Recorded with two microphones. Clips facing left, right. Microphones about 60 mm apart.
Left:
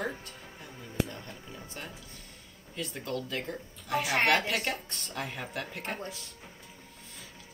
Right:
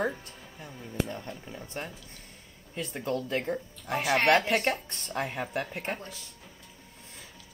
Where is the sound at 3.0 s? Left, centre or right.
Right.